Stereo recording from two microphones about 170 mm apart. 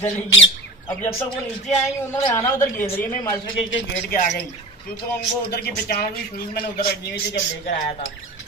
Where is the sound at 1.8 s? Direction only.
15° left (ahead or behind).